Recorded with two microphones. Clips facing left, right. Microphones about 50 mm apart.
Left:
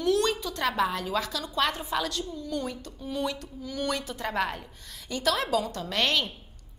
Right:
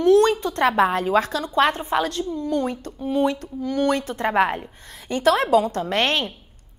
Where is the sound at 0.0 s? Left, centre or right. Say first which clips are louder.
Right 9 dB; right.